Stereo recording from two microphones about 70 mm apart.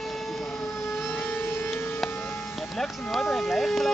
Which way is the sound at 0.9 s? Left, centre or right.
Left.